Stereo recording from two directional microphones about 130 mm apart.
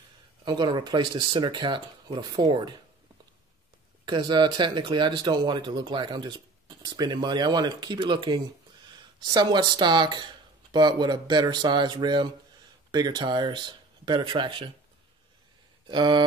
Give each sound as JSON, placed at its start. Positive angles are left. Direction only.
{"t": 0.5, "sound": "speech", "side_deg": -30}
{"t": 4.0, "sound": "speech", "side_deg": -35}
{"t": 15.9, "sound": "speech", "side_deg": -35}